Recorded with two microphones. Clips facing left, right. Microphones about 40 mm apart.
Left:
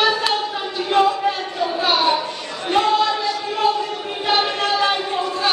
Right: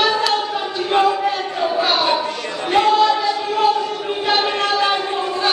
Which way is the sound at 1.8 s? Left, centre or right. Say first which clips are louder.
Even; centre.